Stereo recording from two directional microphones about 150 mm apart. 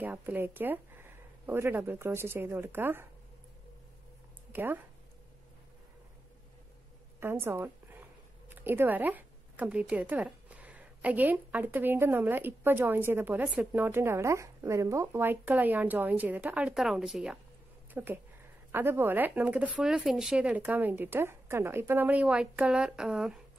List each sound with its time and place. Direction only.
0.0 s speech: 10° right (ahead or behind)
4.5 s speech: 15° right (ahead or behind)
7.2 s a woman's voice: 15° right (ahead or behind)